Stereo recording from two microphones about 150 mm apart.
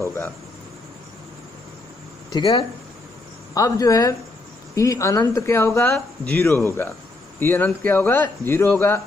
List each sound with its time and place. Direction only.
0.0 s insect: 15° left (ahead or behind)
2.3 s speech: 30° left (ahead or behind); by 9.0 s 15° left (ahead or behind)